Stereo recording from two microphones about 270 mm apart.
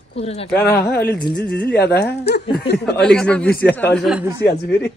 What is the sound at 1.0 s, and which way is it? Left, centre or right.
Speech, left.